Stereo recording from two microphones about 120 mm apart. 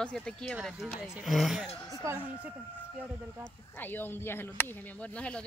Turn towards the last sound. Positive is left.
turn(degrees=20)  # may be behind; listen again after turning